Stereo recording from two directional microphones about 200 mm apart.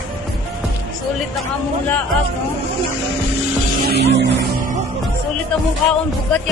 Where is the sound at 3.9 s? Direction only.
60° right (ahead or behind).